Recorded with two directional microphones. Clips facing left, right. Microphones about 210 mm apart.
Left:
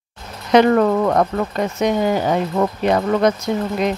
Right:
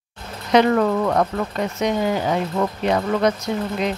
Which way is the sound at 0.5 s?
50° left (ahead or behind).